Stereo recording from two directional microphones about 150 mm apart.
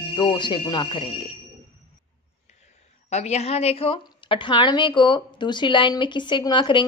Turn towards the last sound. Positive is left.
turn(degrees=35)  # may be behind; listen again after turning